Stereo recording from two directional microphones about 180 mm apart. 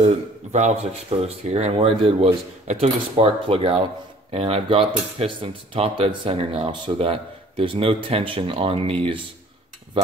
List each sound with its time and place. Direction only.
0.0 s speech: 40° right (ahead or behind)